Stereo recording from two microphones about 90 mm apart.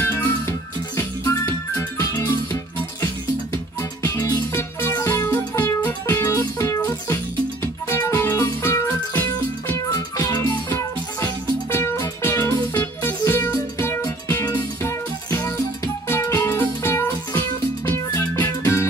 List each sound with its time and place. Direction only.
0.1 s music: 35° left (ahead or behind)
4.6 s music: 25° left (ahead or behind)
5.0 s music: 35° left (ahead or behind)
9.9 s music: 40° left (ahead or behind)
13.7 s music: 30° left (ahead or behind)
16.1 s music: 30° left (ahead or behind)